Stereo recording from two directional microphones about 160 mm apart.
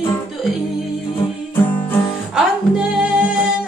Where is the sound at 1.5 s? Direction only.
10° left (ahead or behind).